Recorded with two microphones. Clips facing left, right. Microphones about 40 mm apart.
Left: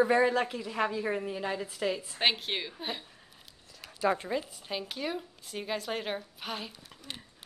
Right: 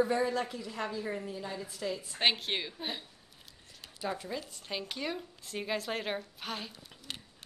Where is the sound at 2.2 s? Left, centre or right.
Centre.